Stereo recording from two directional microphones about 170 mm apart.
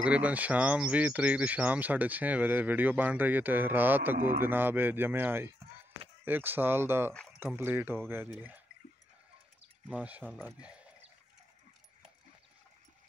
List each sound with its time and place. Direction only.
0.0 s speech: 10° right (ahead or behind)
9.8 s speech: 10° right (ahead or behind)